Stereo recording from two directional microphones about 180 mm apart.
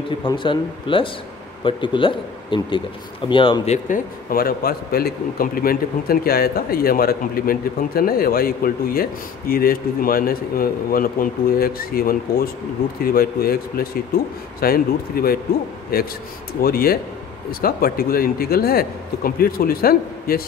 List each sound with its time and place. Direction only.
0.2 s speech: 25° left (ahead or behind)
3.7 s speech: 50° left (ahead or behind)